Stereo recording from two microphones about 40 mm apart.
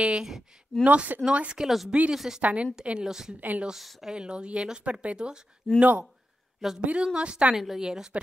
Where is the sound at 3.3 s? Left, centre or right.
Right.